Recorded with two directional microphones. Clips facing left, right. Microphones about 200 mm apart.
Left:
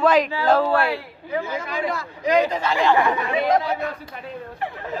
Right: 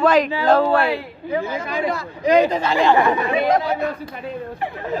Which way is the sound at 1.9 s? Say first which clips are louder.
Right 5 dB; 30° right (ahead or behind).